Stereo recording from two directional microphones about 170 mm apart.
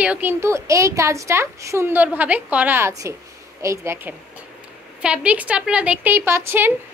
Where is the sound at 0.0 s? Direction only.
10° right (ahead or behind).